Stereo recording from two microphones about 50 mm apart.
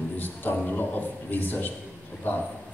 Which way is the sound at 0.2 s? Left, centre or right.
Left.